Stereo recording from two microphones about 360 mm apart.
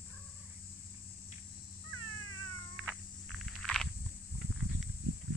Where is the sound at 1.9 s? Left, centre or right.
Right.